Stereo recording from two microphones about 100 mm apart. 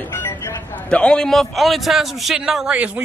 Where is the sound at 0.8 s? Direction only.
10° left (ahead or behind).